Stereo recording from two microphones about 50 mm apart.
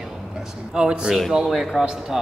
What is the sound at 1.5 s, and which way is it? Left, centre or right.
Speech, centre.